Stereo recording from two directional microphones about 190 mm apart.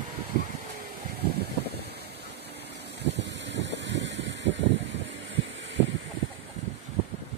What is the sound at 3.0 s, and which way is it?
Vehicle, 65° right (ahead or behind).